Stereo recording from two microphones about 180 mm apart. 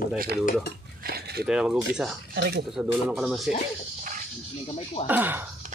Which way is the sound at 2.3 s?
75° right (ahead or behind).